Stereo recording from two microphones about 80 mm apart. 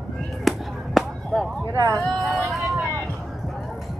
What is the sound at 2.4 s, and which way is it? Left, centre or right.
Vehicle, centre.